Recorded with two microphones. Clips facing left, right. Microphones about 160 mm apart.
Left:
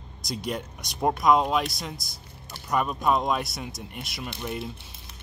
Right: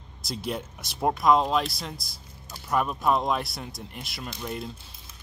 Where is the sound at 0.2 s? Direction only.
5° right (ahead or behind).